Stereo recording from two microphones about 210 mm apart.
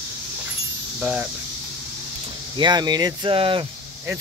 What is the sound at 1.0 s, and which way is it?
Speech, 10° right (ahead or behind).